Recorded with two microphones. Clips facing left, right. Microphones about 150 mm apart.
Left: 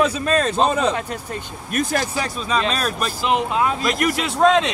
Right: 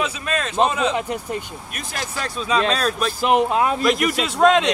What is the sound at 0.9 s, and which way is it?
Speech, 15° right (ahead or behind).